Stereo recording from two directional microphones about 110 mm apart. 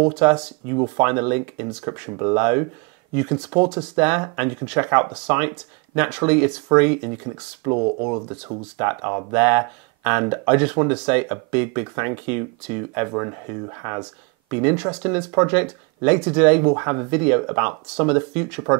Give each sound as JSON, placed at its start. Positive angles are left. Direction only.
{"t": 0.2, "sound": "speech", "side_deg": -20}